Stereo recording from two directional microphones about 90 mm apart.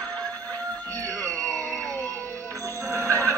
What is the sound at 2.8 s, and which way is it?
Music, 35° right (ahead or behind).